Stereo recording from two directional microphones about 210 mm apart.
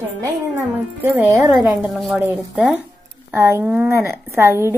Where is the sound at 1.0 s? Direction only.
10° right (ahead or behind).